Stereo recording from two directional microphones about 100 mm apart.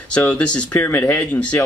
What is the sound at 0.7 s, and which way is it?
Speech, 25° left (ahead or behind).